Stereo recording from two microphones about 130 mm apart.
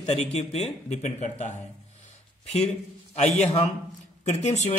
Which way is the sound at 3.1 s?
55° left (ahead or behind).